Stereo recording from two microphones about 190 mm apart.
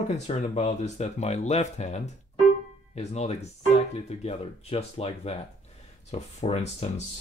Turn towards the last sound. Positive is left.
turn(degrees=35)  # may be behind; listen again after turning